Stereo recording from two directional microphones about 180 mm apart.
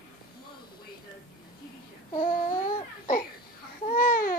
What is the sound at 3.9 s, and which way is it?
Babbling, 50° left (ahead or behind).